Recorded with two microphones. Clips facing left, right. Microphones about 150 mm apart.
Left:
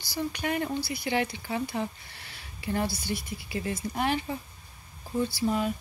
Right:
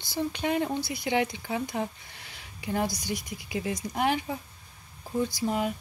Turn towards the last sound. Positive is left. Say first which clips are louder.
# even
turn(degrees=-15)  # may be behind; listen again after turning